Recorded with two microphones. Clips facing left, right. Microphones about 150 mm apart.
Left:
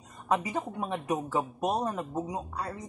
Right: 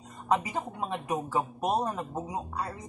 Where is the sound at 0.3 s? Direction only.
20° right (ahead or behind).